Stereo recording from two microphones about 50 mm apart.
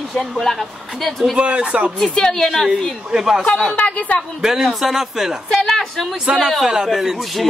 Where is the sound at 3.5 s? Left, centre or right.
Centre.